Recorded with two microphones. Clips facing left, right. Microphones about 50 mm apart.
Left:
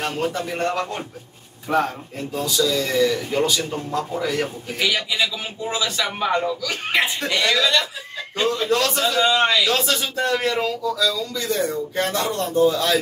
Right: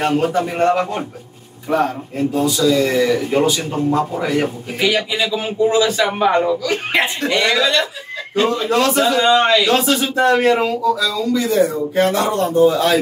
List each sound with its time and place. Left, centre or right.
0.0 s a man's voice: right
2.3 s speech: centre
2.6 s a man's voice: right
9.3 s speech: centre
9.8 s speech: centre